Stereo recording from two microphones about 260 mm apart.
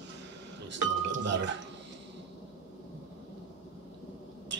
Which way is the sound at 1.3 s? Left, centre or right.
Right.